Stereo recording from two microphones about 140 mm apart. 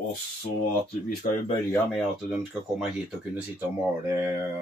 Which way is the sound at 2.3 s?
5° right (ahead or behind).